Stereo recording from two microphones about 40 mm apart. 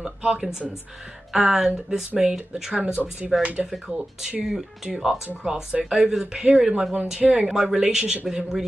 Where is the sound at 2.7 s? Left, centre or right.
Right.